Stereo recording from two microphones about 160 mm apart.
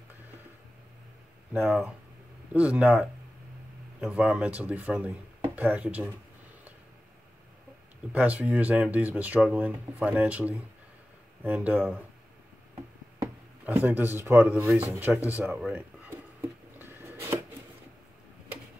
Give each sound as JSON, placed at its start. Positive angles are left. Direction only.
{"t": 1.7, "sound": "speech", "side_deg": -5}
{"t": 8.1, "sound": "speech", "side_deg": -10}
{"t": 13.7, "sound": "speech", "side_deg": -10}
{"t": 14.9, "sound": "a sound", "side_deg": -10}